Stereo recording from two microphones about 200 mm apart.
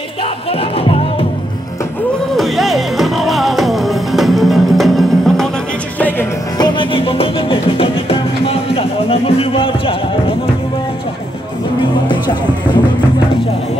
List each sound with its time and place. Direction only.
0.2 s music: 30° left (ahead or behind)
2.3 s music: centre (ahead or behind)
6.6 s music: 25° left (ahead or behind)